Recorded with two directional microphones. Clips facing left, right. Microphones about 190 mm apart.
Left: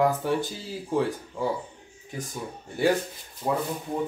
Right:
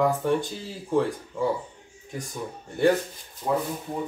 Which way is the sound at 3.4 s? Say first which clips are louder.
Right 1 dB; 20° left (ahead or behind).